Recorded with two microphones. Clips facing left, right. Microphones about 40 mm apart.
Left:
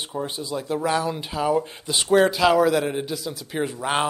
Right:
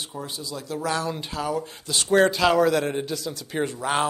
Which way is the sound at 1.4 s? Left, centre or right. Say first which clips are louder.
Left 7 dB; left.